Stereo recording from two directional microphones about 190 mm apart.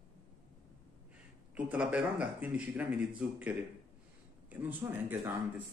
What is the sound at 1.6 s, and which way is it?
Speech, 5° right (ahead or behind).